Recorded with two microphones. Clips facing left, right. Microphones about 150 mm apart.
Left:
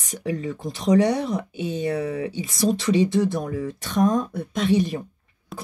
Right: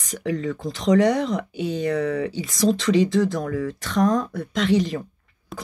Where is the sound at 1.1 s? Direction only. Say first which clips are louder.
Right 1 dB; 90° right.